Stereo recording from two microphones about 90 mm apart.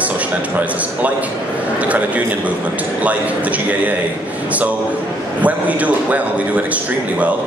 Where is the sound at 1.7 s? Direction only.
15° right (ahead or behind).